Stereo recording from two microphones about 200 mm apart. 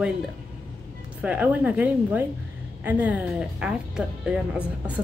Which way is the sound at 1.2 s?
10° right (ahead or behind).